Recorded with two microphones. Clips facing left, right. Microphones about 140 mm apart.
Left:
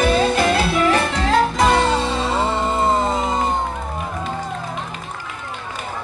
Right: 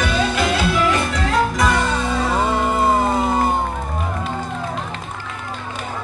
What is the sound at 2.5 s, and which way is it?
Music, 10° right (ahead or behind).